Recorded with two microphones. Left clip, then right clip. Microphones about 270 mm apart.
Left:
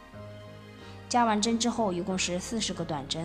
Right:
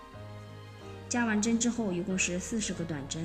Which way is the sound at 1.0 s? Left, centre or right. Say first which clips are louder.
Left 6 dB; centre.